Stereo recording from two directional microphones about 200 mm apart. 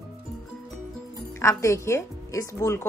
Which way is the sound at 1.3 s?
15° left (ahead or behind).